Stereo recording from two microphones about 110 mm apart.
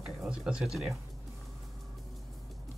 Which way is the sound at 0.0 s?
5° right (ahead or behind).